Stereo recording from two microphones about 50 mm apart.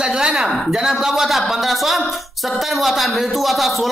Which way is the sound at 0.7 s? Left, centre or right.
Centre.